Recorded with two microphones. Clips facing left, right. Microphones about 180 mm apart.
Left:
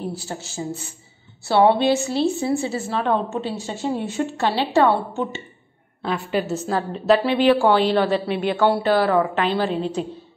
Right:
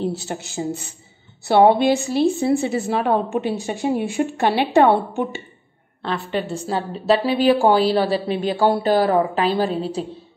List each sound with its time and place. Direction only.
0.0 s a woman's voice: 20° right (ahead or behind)
6.0 s a woman's voice: 10° left (ahead or behind)
7.1 s a woman's voice: 40° right (ahead or behind)